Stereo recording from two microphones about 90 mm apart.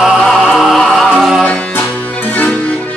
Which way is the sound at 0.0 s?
Centre (ahead or behind).